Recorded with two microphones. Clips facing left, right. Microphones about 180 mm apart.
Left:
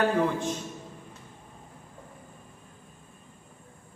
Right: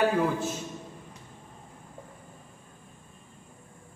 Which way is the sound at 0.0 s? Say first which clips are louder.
Even; 5° right (ahead or behind).